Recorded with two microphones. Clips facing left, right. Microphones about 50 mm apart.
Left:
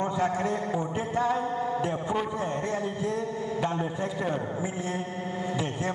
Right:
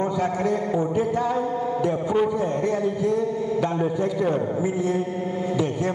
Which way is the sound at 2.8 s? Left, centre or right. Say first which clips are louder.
Right 7 dB; left.